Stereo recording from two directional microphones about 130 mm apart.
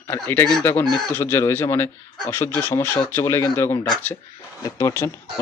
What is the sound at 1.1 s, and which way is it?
Speech, 20° left (ahead or behind).